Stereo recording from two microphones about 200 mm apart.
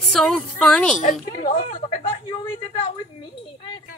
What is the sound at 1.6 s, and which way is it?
Speech, 25° left (ahead or behind).